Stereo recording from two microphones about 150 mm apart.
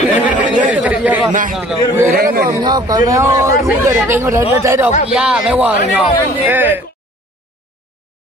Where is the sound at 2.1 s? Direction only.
80° right.